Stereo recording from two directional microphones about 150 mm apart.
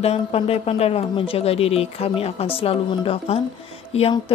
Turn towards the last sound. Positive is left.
turn(degrees=45)  # may be behind; listen again after turning